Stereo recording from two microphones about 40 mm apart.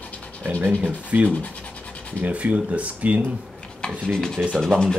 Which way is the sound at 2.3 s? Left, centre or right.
Right.